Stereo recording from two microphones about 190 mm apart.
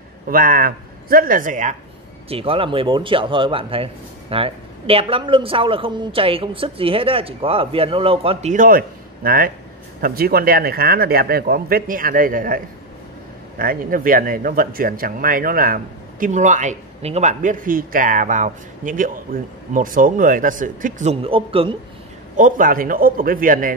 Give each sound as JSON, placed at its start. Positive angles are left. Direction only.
{"t": 0.3, "sound": "speech", "side_deg": -50}
{"t": 2.2, "sound": "speech", "side_deg": -30}
{"t": 22.4, "sound": "speech", "side_deg": -45}